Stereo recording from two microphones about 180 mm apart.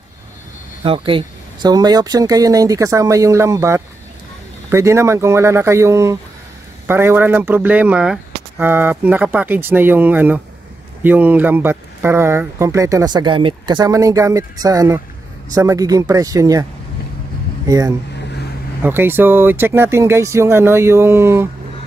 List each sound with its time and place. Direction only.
0.8 s speech: 30° right (ahead or behind)
17.6 s speech: 20° right (ahead or behind)